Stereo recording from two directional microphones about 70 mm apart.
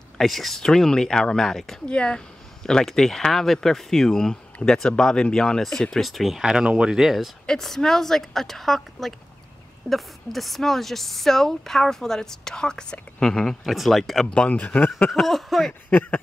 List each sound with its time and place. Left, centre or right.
0.2 s speech: centre
14.3 s speech: centre
15.0 s speech: centre
15.9 s speech: left